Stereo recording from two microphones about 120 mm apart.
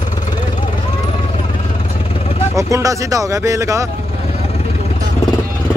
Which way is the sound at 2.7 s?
25° right (ahead or behind).